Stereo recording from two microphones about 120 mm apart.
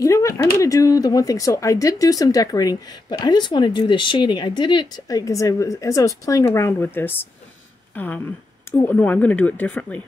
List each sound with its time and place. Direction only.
0.0 s speech: 25° left (ahead or behind)
7.9 s a sound: 15° left (ahead or behind)
8.7 s speech: 15° left (ahead or behind)